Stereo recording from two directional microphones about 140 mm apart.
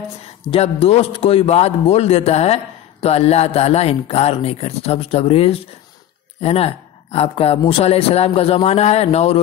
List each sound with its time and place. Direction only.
0.5 s a man's voice: 45° left (ahead or behind)